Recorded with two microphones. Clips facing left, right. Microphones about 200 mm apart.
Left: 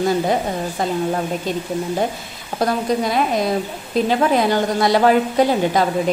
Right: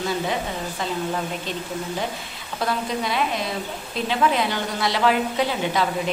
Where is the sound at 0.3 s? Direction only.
45° left (ahead or behind).